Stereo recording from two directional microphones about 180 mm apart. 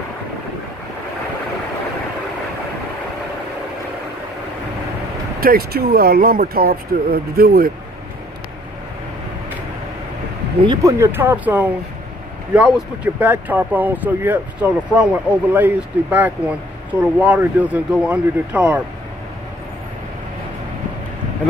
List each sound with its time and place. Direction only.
5.4 s speech: 55° right (ahead or behind)
10.6 s speech: 20° right (ahead or behind); by 18.8 s 5° right (ahead or behind)